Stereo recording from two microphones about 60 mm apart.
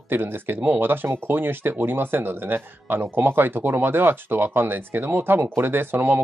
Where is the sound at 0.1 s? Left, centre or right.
Right.